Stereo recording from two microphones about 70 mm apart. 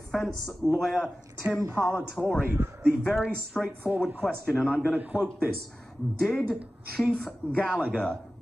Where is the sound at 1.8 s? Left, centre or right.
Left.